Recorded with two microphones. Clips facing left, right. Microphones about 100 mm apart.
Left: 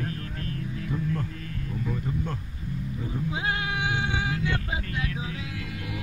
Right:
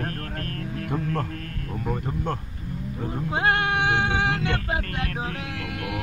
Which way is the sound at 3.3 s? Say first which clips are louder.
Right 8 dB; 65° right (ahead or behind).